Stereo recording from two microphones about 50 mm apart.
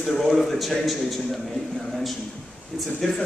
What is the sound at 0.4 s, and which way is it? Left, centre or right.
Speech, centre.